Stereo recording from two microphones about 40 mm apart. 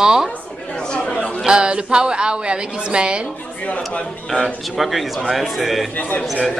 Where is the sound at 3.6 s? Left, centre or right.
Left.